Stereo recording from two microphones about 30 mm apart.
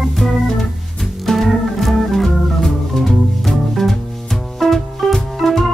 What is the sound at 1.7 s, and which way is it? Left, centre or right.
Organ, centre.